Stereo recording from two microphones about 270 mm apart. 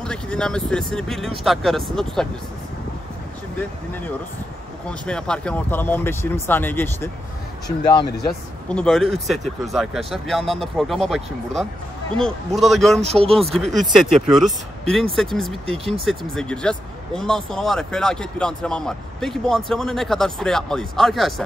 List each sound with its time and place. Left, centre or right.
0.0 s speech: centre
4.8 s speech: centre
8.3 s speech: centre
13.0 s speech: right
13.5 s speech: centre